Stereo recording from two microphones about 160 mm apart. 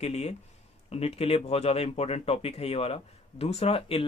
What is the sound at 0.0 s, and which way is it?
Speech, 40° left (ahead or behind).